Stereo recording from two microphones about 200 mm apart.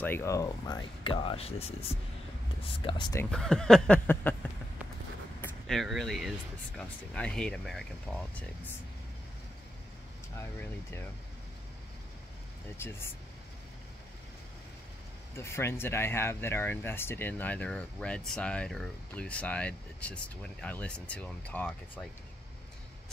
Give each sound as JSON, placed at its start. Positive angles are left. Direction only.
{"t": 0.0, "sound": "speech", "side_deg": 10}
{"t": 3.3, "sound": "speech", "side_deg": 5}
{"t": 5.4, "sound": "speech", "side_deg": 0}
{"t": 10.3, "sound": "speech", "side_deg": 15}
{"t": 12.7, "sound": "speech", "side_deg": 10}
{"t": 15.3, "sound": "speech", "side_deg": 15}